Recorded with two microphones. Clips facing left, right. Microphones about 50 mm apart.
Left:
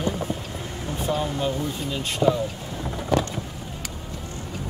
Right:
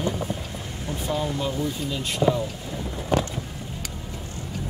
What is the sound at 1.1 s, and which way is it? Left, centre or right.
Speech, left.